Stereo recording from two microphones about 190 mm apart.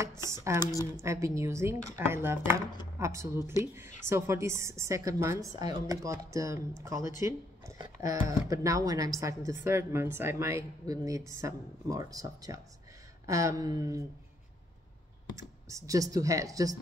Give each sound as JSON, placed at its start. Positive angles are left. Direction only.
{"t": 0.0, "sound": "computer keyboard", "side_deg": -15}
{"t": 0.6, "sound": "speech", "side_deg": 20}
{"t": 1.0, "sound": "a woman's voice", "side_deg": -15}
{"t": 15.3, "sound": "a woman's voice", "side_deg": -15}